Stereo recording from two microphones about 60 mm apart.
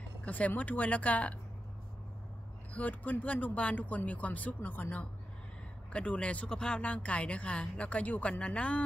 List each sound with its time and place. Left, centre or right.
0.2 s speech: left
2.7 s speech: left
5.9 s speech: centre